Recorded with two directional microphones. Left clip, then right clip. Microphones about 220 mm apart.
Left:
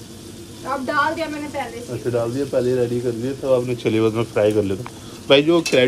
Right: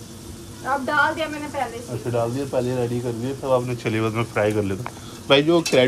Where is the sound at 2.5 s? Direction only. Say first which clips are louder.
Left 7 dB; 10° left (ahead or behind).